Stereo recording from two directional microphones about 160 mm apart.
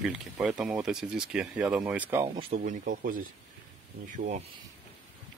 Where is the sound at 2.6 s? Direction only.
60° right (ahead or behind).